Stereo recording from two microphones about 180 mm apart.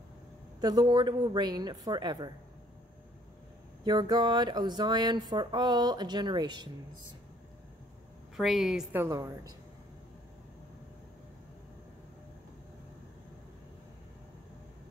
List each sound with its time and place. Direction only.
0.6 s speech: 20° right (ahead or behind)
3.8 s speech: 25° right (ahead or behind)
8.4 s a woman's voice: centre (ahead or behind); by 9.5 s 15° right (ahead or behind)